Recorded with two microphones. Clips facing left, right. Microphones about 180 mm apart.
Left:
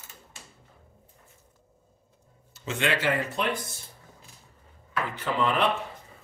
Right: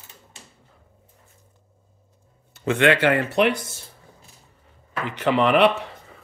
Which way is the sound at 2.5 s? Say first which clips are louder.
Right 9 dB; 60° right (ahead or behind).